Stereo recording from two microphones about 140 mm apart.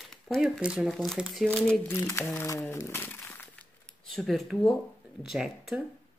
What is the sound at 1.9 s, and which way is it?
Speech, 20° left (ahead or behind).